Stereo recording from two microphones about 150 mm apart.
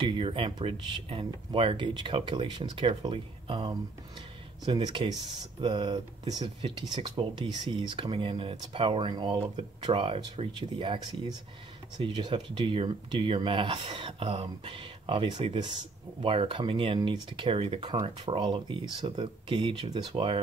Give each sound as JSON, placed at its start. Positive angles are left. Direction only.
{"t": 0.0, "sound": "speech", "side_deg": -35}